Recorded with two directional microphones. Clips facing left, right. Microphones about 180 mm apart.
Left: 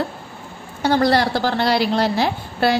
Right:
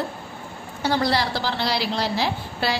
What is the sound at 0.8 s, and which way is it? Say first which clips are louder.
A woman's voice: left 6 dB; 50° left (ahead or behind).